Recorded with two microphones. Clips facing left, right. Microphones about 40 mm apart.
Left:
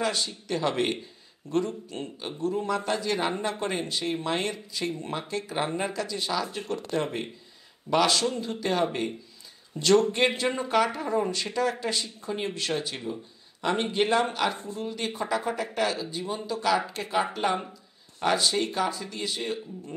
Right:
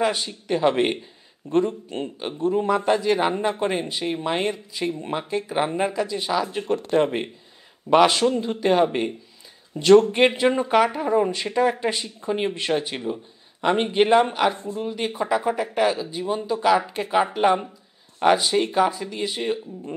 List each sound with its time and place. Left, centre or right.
0.0 s speech: right
6.7 s speech: right
14.5 s speech: centre
14.8 s speech: centre